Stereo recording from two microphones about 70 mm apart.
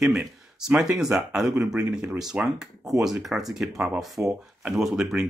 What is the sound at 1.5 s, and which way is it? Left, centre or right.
Speech, centre.